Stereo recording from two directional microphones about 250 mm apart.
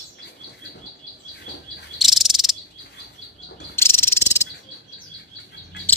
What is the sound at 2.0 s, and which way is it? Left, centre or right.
Cricket, centre.